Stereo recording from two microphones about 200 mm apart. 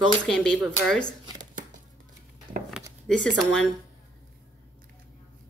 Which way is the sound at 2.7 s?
5° left (ahead or behind).